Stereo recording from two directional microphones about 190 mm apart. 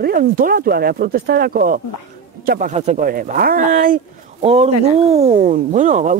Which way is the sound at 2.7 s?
35° right (ahead or behind).